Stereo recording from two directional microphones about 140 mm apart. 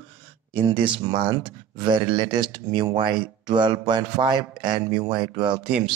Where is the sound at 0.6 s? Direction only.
35° right (ahead or behind).